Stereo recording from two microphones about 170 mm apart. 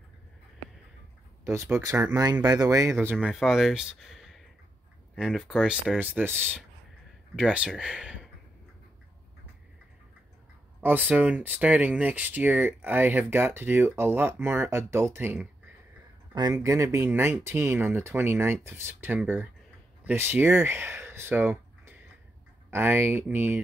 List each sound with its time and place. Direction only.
1.4 s speech: 15° right (ahead or behind)
10.8 s speech: 10° right (ahead or behind)